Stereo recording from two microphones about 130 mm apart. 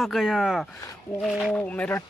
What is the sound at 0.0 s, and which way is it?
Speech, centre (ahead or behind).